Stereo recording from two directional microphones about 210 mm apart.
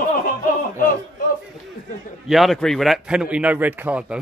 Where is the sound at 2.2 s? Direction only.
Centre (ahead or behind).